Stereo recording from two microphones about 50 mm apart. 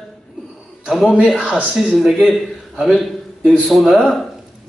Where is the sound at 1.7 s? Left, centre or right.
Centre.